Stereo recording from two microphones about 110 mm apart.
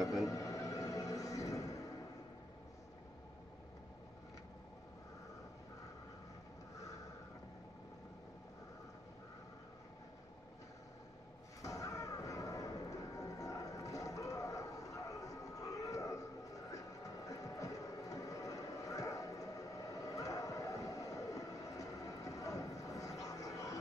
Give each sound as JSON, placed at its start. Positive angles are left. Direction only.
{"t": 0.0, "sound": "music", "side_deg": 0}
{"t": 0.3, "sound": "music", "side_deg": 30}
{"t": 11.6, "sound": "a sound", "side_deg": 30}